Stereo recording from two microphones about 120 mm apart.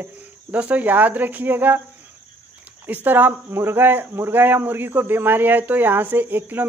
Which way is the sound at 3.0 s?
15° right (ahead or behind).